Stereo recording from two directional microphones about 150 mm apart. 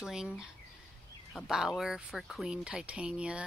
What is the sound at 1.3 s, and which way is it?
Speech, centre (ahead or behind).